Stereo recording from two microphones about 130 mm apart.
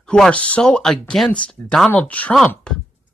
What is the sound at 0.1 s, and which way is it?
Speech, 10° left (ahead or behind).